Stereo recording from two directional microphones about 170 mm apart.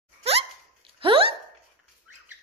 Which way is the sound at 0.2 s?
35° right (ahead or behind).